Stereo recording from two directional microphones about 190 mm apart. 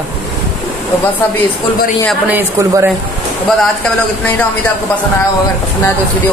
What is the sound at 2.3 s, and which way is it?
Speech, 15° right (ahead or behind).